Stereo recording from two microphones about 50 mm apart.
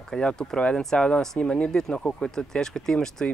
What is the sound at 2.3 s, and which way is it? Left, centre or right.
Speech, centre.